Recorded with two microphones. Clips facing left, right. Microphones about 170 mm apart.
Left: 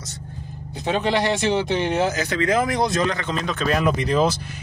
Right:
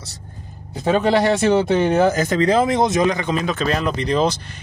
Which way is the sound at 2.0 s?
50° right (ahead or behind).